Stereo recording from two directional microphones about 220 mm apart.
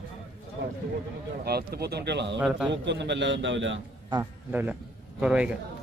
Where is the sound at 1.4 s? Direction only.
45° right (ahead or behind).